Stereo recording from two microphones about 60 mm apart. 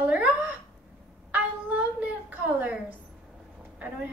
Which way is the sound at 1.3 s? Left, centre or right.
Right.